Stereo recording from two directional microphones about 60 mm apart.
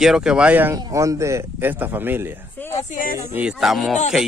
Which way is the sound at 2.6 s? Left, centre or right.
Left.